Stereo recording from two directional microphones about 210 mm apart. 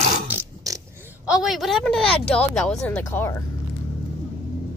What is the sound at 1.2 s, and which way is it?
Speech, centre (ahead or behind).